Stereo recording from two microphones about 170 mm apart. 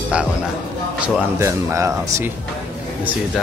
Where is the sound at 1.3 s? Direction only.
15° right (ahead or behind).